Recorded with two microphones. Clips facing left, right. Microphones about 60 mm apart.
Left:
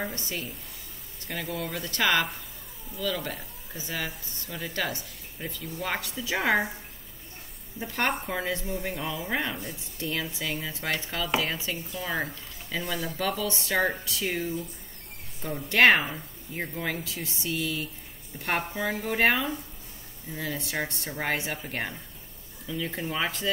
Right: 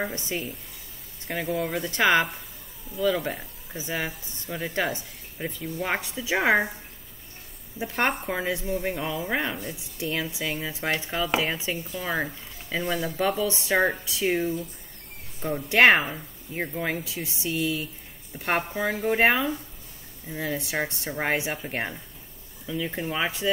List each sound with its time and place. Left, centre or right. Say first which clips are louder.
0.1 s speech: right 4 dB; right
7.8 s speech: right 3 dB; centre